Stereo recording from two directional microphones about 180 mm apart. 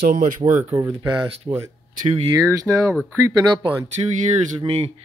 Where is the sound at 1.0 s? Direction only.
25° right (ahead or behind).